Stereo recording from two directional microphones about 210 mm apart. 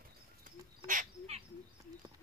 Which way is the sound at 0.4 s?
40° right (ahead or behind).